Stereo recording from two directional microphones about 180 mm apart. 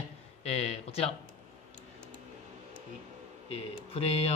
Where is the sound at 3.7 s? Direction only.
35° left (ahead or behind).